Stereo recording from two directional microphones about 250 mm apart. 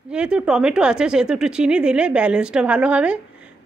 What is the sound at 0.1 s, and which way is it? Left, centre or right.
A woman's voice, centre.